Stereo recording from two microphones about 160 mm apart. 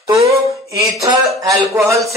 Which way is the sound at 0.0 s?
20° right (ahead or behind).